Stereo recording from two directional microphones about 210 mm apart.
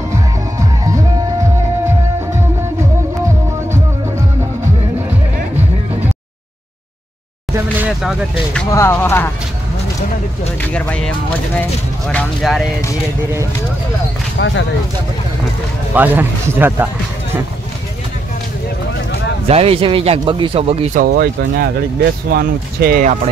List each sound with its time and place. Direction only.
0.1 s music: 15° right (ahead or behind)
8.0 s speech: centre (ahead or behind)
8.7 s speech: 10° left (ahead or behind)
10.6 s speech: 5° left (ahead or behind)
14.4 s speech: 65° left (ahead or behind)
15.9 s speech: 10° right (ahead or behind)
19.4 s speech: 30° right (ahead or behind)
21.0 s speech: 45° right (ahead or behind)